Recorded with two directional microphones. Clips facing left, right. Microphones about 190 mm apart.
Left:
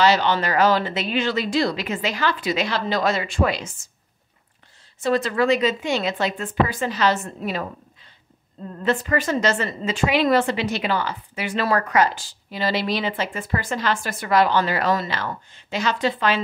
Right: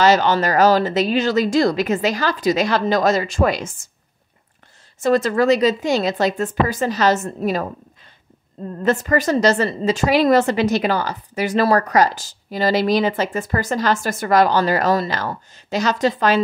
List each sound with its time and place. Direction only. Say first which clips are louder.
0.0 s a woman's voice: right 3 dB; 45° right (ahead or behind)
5.0 s a woman's voice: right 4 dB; 45° right (ahead or behind)
8.8 s a woman's voice: right 4 dB; 40° right (ahead or behind)